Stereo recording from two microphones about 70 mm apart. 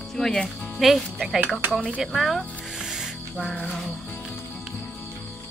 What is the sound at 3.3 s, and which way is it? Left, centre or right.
Speech, centre.